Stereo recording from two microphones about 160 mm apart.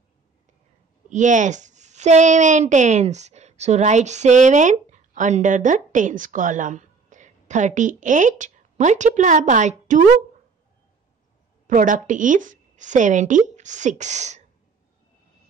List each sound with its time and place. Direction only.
1.1 s a woman's voice: 50° right (ahead or behind)
11.6 s a woman's voice: 55° right (ahead or behind)